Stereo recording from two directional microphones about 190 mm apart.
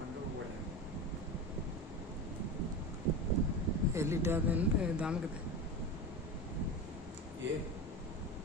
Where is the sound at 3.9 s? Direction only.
15° right (ahead or behind).